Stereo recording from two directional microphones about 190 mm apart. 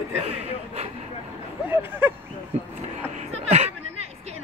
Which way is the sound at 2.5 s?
35° right (ahead or behind).